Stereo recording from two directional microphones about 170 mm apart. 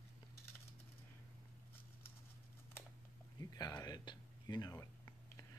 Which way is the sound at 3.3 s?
20° left (ahead or behind).